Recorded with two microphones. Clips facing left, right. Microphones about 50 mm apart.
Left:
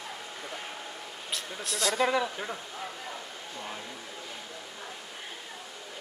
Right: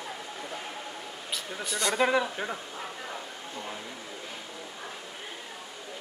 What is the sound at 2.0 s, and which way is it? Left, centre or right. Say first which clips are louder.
Speech: right 2 dB; right.